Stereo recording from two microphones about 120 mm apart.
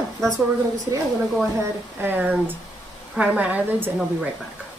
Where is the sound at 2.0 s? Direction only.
15° right (ahead or behind).